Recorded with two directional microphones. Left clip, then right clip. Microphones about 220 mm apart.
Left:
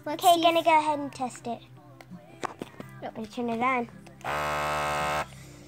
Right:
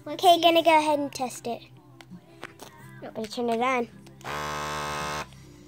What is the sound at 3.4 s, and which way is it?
Speech, 35° right (ahead or behind).